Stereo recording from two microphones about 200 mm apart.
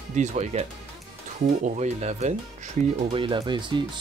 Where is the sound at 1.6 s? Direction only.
35° right (ahead or behind).